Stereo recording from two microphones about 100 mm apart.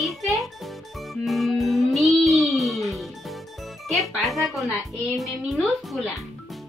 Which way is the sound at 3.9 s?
Centre (ahead or behind).